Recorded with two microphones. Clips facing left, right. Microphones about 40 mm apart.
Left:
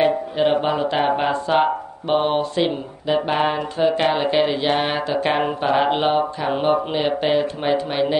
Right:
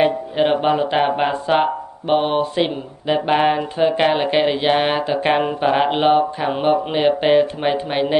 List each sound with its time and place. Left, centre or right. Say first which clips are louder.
0.0 s speech: right 1 dB; centre